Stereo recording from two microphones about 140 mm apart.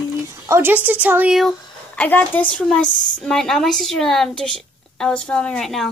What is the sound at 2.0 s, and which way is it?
A woman's voice, 10° left (ahead or behind).